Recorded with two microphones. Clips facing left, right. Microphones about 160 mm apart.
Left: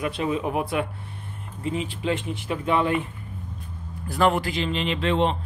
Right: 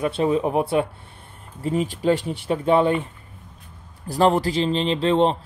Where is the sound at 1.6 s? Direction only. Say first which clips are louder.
Right 5 dB; 40° right (ahead or behind).